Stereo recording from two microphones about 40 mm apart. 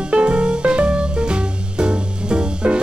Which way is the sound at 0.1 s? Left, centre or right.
Right.